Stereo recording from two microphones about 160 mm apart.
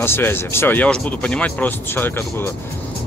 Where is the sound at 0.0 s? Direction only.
15° left (ahead or behind).